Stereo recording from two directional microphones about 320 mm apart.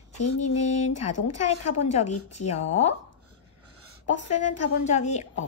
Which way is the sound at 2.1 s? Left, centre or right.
Left.